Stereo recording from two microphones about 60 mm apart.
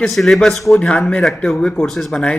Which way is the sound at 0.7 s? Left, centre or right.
Centre.